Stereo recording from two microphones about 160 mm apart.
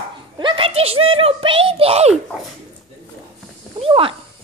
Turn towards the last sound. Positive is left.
turn(degrees=-35)  # may be behind; listen again after turning